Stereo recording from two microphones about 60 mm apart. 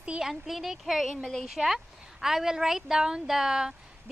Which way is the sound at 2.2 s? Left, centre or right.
Centre.